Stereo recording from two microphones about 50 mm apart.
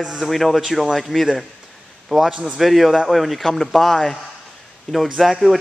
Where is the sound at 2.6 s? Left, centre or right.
Centre.